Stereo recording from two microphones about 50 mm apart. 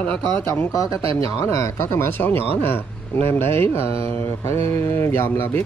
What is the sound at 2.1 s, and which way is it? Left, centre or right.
Mantra, left.